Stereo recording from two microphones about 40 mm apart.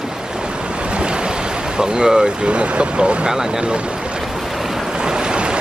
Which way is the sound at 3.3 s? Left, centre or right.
Centre.